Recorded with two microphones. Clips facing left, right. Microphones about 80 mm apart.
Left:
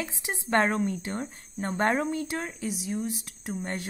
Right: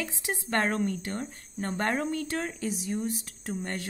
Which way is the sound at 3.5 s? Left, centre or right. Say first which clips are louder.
Left 1 dB; left.